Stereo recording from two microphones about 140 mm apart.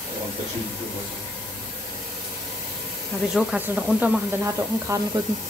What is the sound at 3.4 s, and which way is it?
Speech, 5° right (ahead or behind).